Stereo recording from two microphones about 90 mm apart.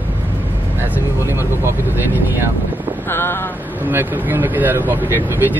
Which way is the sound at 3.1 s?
25° left (ahead or behind).